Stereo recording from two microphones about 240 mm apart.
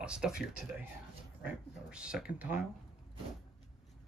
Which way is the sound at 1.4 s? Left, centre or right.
Centre.